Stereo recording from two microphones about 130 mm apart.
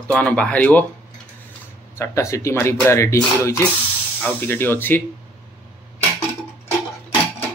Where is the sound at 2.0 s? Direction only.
20° left (ahead or behind).